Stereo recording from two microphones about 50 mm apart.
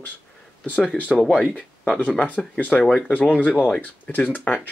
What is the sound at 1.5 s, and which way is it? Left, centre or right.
Speech, left.